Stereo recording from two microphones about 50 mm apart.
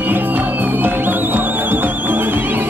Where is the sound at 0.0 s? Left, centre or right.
Right.